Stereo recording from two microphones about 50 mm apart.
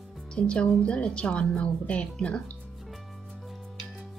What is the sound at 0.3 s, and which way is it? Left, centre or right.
A woman's voice, centre.